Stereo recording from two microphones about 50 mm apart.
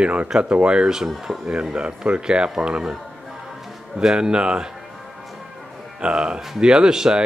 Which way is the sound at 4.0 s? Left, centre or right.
Centre.